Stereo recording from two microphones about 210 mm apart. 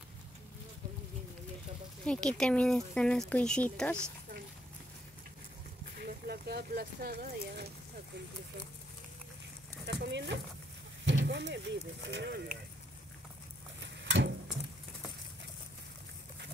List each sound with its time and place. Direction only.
2.0 s speech: 5° left (ahead or behind)
5.9 s speech: 45° right (ahead or behind)
9.8 s speech: 55° right (ahead or behind)
14.0 s stir: 60° right (ahead or behind)